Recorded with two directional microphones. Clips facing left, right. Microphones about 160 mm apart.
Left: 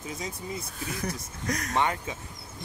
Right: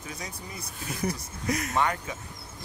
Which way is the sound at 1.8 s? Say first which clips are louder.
Left 2 dB; 20° left (ahead or behind).